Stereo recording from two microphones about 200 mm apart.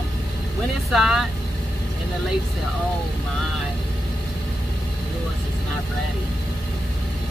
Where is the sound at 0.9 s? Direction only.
Centre (ahead or behind).